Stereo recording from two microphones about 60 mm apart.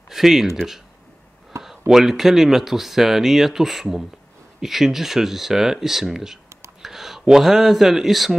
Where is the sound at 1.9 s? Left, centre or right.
Centre.